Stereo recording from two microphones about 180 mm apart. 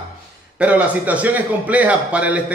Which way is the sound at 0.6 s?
5° right (ahead or behind).